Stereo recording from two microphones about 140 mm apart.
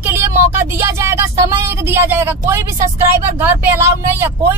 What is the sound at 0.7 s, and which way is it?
Speech, 20° right (ahead or behind).